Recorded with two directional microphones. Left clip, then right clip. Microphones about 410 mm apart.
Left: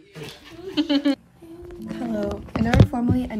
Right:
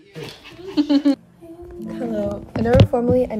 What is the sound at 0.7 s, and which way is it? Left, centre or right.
Speech, centre.